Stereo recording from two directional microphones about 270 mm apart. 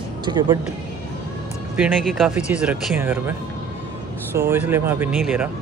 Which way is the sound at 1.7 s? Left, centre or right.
Centre.